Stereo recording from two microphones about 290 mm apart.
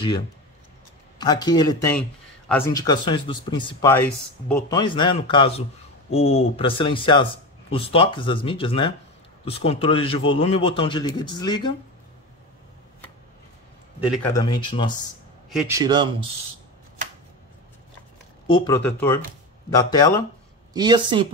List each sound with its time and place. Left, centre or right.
1.1 s speech: centre
14.0 s speech: centre
14.3 s speech: centre
15.5 s speech: centre
18.5 s speech: centre
20.7 s speech: centre